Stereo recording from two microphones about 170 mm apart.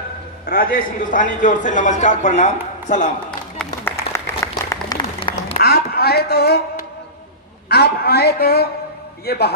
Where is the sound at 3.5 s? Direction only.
10° left (ahead or behind).